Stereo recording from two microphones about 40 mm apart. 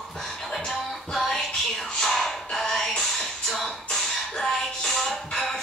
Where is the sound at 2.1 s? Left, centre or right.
Centre.